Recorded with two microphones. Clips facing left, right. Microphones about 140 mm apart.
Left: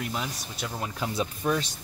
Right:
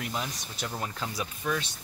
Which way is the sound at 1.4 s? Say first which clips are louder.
Left 3 dB; 40° left (ahead or behind).